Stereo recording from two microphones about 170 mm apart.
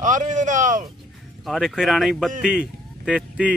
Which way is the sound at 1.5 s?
Centre (ahead or behind).